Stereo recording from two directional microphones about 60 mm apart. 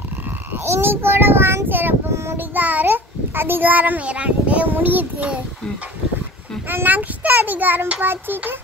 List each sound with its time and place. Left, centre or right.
0.5 s frog: right
2.3 s a child's voice: right
6.7 s a child's voice: right